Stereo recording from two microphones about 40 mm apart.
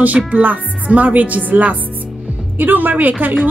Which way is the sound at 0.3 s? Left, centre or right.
Right.